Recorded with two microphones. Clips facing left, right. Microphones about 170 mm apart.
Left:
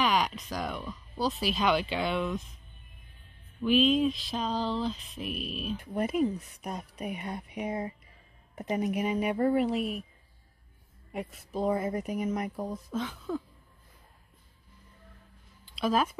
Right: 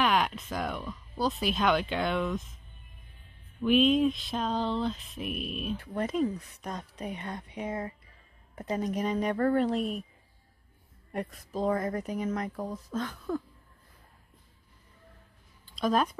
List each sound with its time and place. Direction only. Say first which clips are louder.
0.0 s speech: right 1 dB; centre (ahead or behind)
3.8 s speech: right 1 dB; 5° right (ahead or behind)
5.8 s a woman's voice: left 2 dB; 10° left (ahead or behind)
8.8 s speech: even; 10° left (ahead or behind)
11.1 s speech: right 2 dB; 5° left (ahead or behind)
15.7 s speech: right 1 dB; 5° left (ahead or behind)